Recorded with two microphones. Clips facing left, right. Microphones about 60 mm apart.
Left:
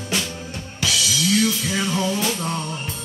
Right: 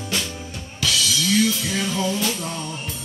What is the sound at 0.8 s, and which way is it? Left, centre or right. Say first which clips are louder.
Music: even; centre.